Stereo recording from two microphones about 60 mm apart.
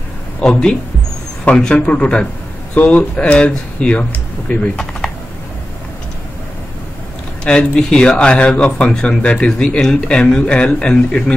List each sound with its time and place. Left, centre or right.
0.4 s speech: centre
7.4 s speech: centre